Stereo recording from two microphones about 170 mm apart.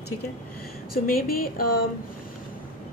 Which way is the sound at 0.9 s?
60° left (ahead or behind).